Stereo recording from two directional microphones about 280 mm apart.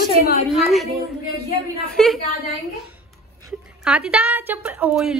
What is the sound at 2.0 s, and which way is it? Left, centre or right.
Speech, centre.